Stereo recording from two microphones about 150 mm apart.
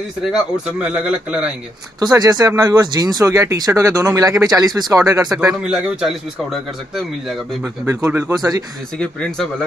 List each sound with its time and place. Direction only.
0.3 s speech: 5° right (ahead or behind)
2.0 s speech: 25° right (ahead or behind)
5.6 s speech: 5° right (ahead or behind)
7.8 s speech: 20° right (ahead or behind)
9.0 s speech: 5° left (ahead or behind)